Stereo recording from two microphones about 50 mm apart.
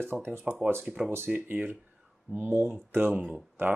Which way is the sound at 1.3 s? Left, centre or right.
Right.